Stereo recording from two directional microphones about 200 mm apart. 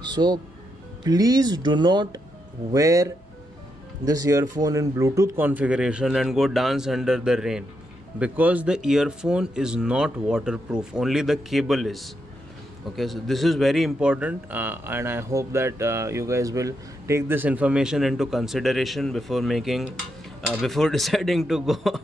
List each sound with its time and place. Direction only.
0.0 s music: 20° right (ahead or behind)
1.0 s a man's voice: 20° right (ahead or behind); by 22.0 s centre (ahead or behind)